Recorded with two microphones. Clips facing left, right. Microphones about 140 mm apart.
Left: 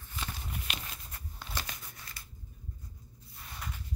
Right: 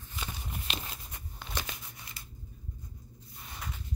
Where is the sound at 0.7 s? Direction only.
25° right (ahead or behind).